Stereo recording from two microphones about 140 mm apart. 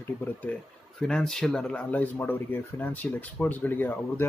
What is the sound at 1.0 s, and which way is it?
Speech, 5° left (ahead or behind).